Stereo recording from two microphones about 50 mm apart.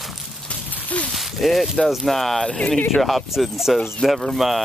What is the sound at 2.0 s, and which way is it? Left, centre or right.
Speech, centre.